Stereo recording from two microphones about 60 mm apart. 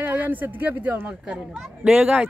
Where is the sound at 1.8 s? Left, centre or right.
Centre.